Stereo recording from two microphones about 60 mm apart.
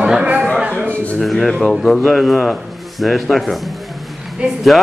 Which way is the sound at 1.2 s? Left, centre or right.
Centre.